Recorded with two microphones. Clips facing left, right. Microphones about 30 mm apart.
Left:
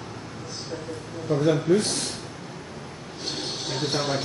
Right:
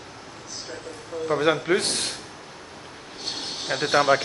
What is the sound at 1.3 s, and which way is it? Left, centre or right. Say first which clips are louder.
Speech: left 1 dB; right.